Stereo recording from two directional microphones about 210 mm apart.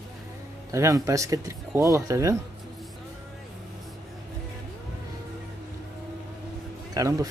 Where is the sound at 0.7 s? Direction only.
15° right (ahead or behind).